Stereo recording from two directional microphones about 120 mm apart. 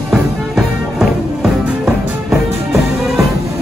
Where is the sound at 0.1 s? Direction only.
Centre (ahead or behind).